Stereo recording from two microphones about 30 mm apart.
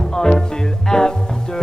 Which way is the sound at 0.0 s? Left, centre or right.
Centre.